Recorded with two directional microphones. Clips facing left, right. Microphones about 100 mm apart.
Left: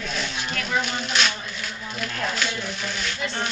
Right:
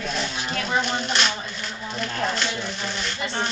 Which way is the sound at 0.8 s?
Centre (ahead or behind).